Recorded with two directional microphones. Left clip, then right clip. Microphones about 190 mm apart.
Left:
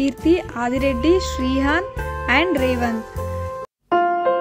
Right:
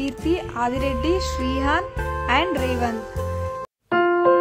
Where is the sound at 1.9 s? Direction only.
Centre (ahead or behind).